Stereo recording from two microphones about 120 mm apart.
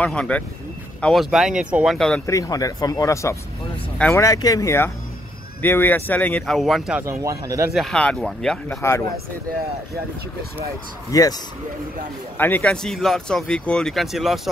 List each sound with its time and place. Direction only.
0.0 s speech: 10° left (ahead or behind)
1.0 s speech: centre (ahead or behind)
2.0 s speech: 5° left (ahead or behind)
2.2 s speech: 30° left (ahead or behind); by 7.0 s centre (ahead or behind)
7.0 s speech: 25° right (ahead or behind)
7.7 s speech: 5° left (ahead or behind)
8.6 s speech: 25° left (ahead or behind)
11.1 s speech: 30° left (ahead or behind)
12.4 s speech: 15° left (ahead or behind)
12.7 s speech: 5° left (ahead or behind)